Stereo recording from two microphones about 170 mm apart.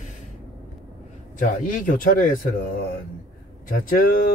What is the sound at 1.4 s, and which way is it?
Speech, 55° left (ahead or behind).